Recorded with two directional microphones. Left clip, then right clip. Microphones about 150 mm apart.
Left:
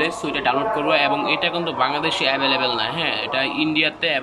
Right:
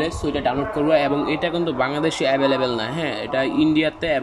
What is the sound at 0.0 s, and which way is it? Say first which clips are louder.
Speech: left 1 dB; 35° right (ahead or behind).